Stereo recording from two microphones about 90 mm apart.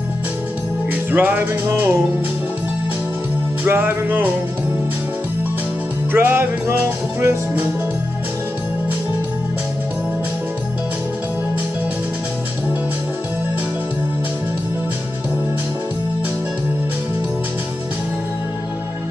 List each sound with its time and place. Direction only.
1.1 s music: 20° right (ahead or behind)
3.6 s music: 20° right (ahead or behind)
6.1 s music: 25° right (ahead or behind)